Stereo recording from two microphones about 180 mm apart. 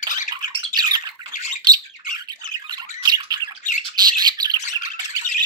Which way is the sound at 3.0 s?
20° right (ahead or behind).